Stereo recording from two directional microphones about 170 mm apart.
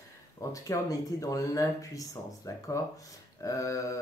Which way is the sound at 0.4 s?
20° left (ahead or behind).